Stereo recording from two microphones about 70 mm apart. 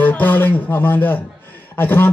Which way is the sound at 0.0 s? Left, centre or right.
Left.